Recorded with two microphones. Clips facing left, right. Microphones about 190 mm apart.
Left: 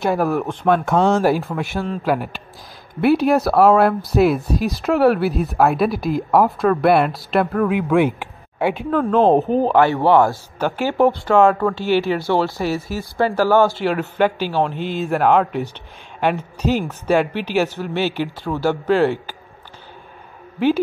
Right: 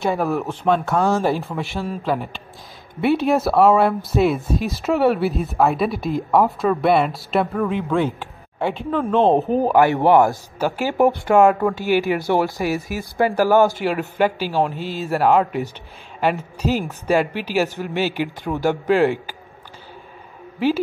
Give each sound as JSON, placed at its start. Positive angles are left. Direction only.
{"t": 0.0, "sound": "speech", "side_deg": 0}
{"t": 1.0, "sound": "speech", "side_deg": 25}
{"t": 1.5, "sound": "speech", "side_deg": 0}
{"t": 7.9, "sound": "speech", "side_deg": 15}
{"t": 9.8, "sound": "a man's voice", "side_deg": -15}
{"t": 20.5, "sound": "a woman's voice", "side_deg": 0}